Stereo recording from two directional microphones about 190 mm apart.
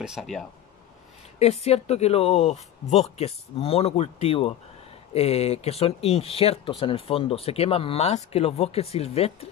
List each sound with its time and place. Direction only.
0.0 s speech: centre (ahead or behind)
1.4 s speech: 35° left (ahead or behind)